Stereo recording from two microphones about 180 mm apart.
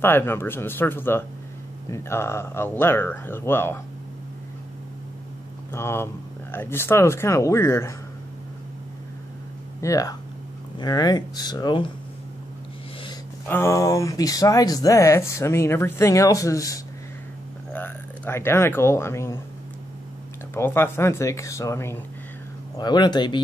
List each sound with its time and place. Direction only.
0.0 s speech: 10° left (ahead or behind)
5.7 s speech: 15° left (ahead or behind)
9.8 s speech: 20° left (ahead or behind)
13.5 s speech: 15° left (ahead or behind)
20.5 s speech: 15° left (ahead or behind)